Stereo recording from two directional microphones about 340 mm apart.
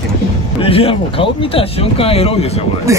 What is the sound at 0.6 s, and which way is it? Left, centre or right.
Speech, centre.